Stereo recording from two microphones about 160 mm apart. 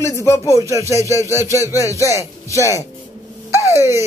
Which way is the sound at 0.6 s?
20° right (ahead or behind).